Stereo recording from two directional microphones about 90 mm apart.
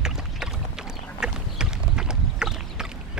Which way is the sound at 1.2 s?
10° right (ahead or behind).